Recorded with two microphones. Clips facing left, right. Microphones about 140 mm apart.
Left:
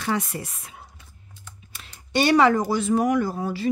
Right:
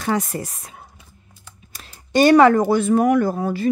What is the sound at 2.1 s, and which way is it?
Speech, 50° right (ahead or behind).